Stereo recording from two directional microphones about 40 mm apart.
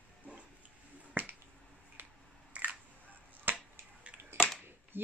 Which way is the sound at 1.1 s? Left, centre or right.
Right.